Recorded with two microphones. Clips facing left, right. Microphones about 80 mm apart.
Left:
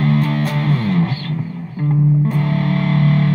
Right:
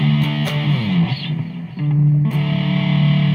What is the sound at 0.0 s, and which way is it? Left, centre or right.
Music, left.